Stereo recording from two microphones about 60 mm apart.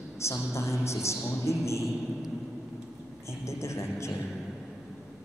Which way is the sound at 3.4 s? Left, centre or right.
Left.